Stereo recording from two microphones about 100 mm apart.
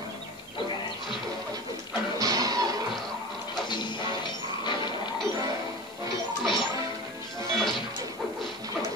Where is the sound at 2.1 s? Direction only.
35° right (ahead or behind).